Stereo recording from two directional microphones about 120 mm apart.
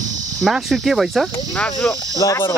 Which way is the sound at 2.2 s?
30° left (ahead or behind).